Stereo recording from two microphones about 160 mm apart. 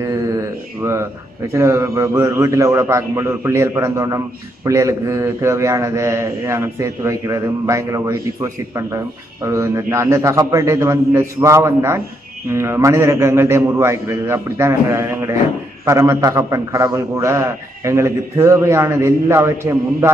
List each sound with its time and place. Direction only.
0.0 s mantra: 20° right (ahead or behind)
1.5 s a man's voice: 15° right (ahead or behind)